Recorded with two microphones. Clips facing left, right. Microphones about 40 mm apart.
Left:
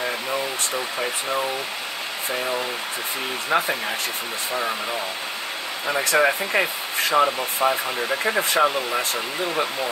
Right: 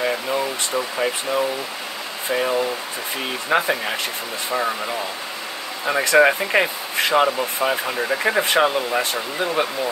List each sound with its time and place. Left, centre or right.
3.5 s speech: right
5.9 s speech: right
7.0 s speech: right